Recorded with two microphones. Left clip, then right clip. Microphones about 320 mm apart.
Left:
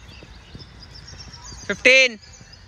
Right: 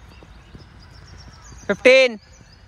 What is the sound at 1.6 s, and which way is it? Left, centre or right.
Speech, centre.